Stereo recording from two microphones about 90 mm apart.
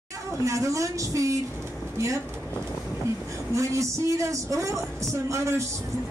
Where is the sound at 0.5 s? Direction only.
35° right (ahead or behind).